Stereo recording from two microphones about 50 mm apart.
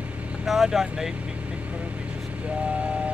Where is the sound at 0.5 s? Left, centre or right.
Centre.